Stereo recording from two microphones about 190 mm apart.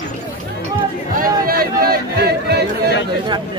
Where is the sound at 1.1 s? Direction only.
50° right (ahead or behind).